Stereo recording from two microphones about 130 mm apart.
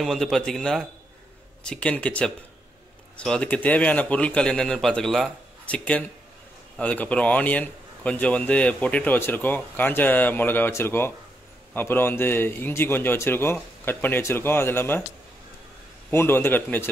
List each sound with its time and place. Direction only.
0.0 s a man's voice: centre (ahead or behind); by 15.0 s 20° left (ahead or behind)
16.1 s a man's voice: 20° left (ahead or behind)